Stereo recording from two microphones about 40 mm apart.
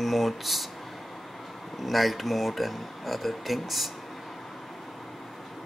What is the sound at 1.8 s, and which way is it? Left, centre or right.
Speech, centre.